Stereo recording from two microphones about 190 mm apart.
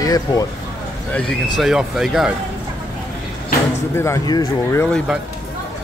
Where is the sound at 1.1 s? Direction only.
Centre (ahead or behind).